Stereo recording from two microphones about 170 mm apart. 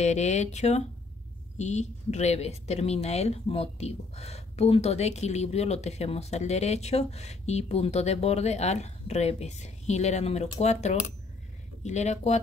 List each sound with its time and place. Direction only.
0.0 s a woman's voice: 45° left (ahead or behind)